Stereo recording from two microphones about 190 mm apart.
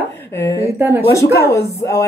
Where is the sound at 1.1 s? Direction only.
15° left (ahead or behind).